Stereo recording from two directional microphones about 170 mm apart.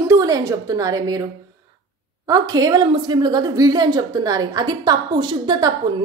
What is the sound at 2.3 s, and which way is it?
A woman's voice, 20° right (ahead or behind).